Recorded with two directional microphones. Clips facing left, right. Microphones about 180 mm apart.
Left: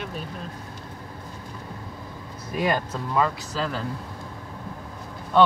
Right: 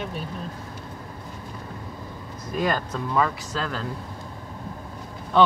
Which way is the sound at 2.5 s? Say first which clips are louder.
Even; 10° left (ahead or behind).